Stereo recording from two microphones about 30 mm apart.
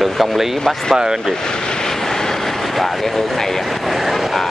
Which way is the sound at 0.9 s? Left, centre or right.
Right.